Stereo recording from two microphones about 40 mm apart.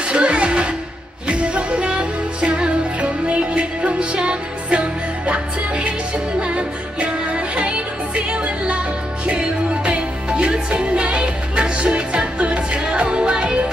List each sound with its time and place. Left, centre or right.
0.1 s music: right